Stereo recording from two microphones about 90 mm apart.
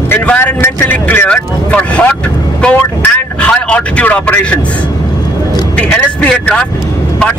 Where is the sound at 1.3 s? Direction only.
15° left (ahead or behind).